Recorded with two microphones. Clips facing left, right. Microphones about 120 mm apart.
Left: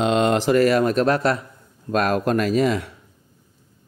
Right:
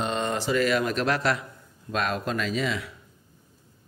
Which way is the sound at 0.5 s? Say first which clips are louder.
Left 5 dB; 45° left (ahead or behind).